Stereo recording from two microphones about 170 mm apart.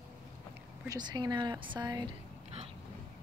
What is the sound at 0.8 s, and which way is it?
Speech, 25° right (ahead or behind).